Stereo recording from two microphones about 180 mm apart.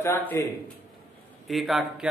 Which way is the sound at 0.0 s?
10° left (ahead or behind).